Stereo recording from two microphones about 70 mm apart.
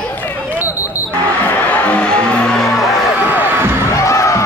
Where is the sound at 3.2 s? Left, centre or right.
Right.